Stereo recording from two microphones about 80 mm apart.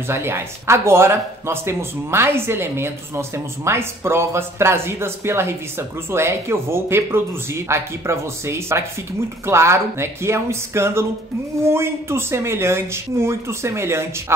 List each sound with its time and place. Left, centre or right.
0.1 s speech: right